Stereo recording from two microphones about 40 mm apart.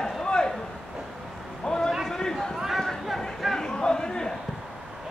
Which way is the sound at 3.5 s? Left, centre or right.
Centre.